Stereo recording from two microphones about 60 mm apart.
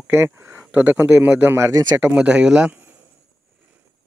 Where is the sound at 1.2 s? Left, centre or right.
Right.